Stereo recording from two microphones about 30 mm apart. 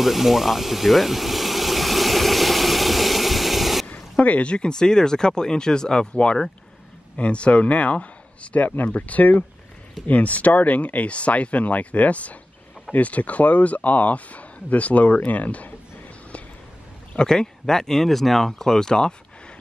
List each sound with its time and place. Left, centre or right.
0.0 s a sound: centre
3.8 s a sound: left
4.5 s speech: left
4.7 s speech: left
7.2 s speech: left
8.6 s speech: left
17.2 s speech: left
18.0 s speech: centre; by 19.1 s left